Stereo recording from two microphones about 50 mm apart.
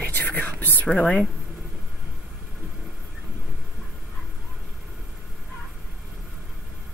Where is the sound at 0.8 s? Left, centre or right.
Left.